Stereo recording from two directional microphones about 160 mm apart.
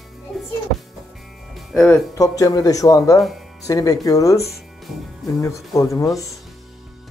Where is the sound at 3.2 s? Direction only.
Centre (ahead or behind).